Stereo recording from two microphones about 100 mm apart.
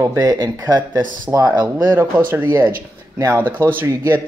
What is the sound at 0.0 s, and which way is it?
Speech, 35° right (ahead or behind).